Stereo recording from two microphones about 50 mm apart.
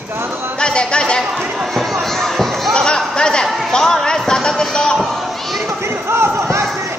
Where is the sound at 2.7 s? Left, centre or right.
Centre.